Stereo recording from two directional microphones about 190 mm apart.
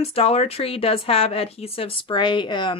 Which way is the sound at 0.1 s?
30° left (ahead or behind).